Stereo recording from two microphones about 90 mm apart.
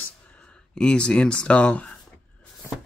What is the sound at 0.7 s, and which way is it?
Speech, 10° left (ahead or behind).